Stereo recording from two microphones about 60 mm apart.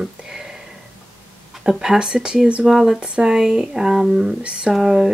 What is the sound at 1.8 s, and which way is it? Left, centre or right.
Speech, centre.